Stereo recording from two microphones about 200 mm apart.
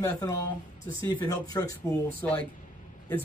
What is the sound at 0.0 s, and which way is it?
A man's voice, 15° left (ahead or behind).